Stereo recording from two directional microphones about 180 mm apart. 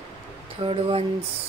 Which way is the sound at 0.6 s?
30° right (ahead or behind).